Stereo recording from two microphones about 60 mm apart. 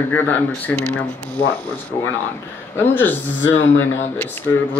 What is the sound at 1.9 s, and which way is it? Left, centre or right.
Speech, left.